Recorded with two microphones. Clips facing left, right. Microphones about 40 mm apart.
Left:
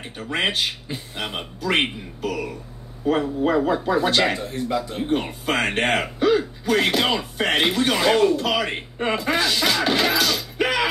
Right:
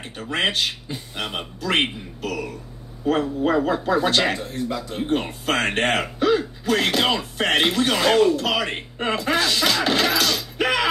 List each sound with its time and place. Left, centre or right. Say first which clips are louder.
0.2 s speech: right 1 dB; centre
2.2 s speech: left 1 dB; centre